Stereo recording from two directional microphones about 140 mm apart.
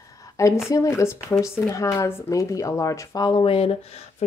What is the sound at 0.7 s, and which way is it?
Speech, 20° left (ahead or behind).